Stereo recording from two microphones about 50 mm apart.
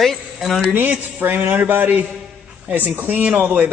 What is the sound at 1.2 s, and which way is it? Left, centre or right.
Speech, right.